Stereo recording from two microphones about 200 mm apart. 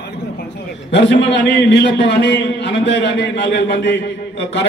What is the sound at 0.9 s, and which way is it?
A man's voice, 60° left (ahead or behind).